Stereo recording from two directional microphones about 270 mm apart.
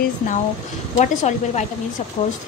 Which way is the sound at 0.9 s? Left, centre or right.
Left.